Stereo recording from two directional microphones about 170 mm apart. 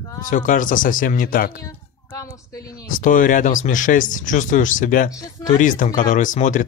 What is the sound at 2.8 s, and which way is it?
Speech, 50° left (ahead or behind).